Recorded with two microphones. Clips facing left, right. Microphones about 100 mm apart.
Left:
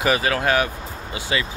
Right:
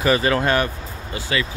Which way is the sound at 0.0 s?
5° left (ahead or behind).